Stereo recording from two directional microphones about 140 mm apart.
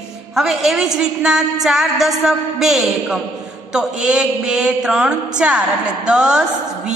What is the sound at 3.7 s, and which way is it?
Mantra, 5° right (ahead or behind).